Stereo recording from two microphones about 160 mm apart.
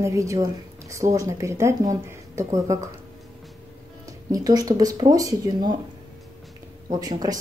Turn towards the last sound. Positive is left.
turn(degrees=-25)  # may be behind; listen again after turning